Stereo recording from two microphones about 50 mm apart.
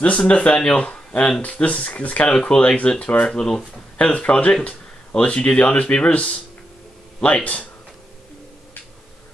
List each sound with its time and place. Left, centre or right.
0.2 s speech: left
2.3 s speech: centre
3.3 s speech: centre
4.0 s speech: left